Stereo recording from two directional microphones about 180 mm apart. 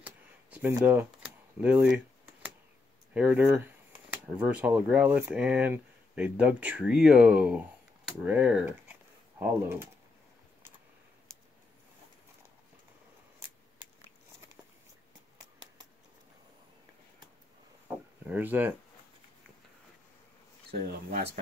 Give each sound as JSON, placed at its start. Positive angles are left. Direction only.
{"t": 0.0, "sound": "a sound", "side_deg": -10}
{"t": 3.1, "sound": "speech", "side_deg": -10}
{"t": 18.2, "sound": "speech", "side_deg": -10}
{"t": 20.7, "sound": "speech", "side_deg": -60}